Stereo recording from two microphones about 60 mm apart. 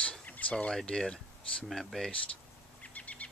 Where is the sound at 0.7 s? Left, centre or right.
Centre.